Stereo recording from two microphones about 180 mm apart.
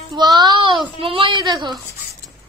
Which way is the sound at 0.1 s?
20° right (ahead or behind).